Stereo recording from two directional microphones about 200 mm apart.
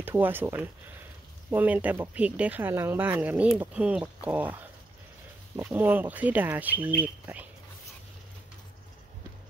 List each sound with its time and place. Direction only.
0.0 s speech: 10° right (ahead or behind)